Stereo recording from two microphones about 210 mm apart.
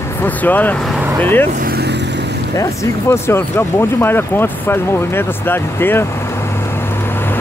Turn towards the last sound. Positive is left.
turn(degrees=10)  # may be behind; listen again after turning